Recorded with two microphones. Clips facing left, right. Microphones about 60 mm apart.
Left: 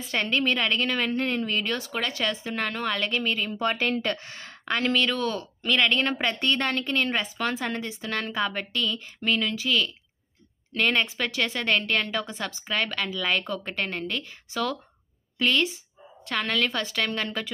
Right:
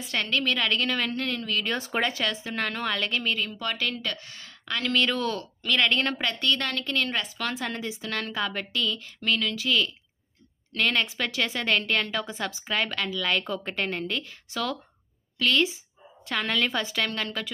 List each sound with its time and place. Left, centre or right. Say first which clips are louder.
0.2 s a woman's voice: left 2 dB; centre
1.8 s speech: right 3 dB; right
2.2 s a woman's voice: left 1 dB; centre
3.5 s a woman's voice: left 5 dB; left
4.9 s a woman's voice: even; centre
6.4 s a woman's voice: even; left
9.6 s a woman's voice: even; centre
16.3 s a woman's voice: left 1 dB; centre
16.6 s a woman's voice: even; centre
16.9 s a woman's voice: left 1 dB; centre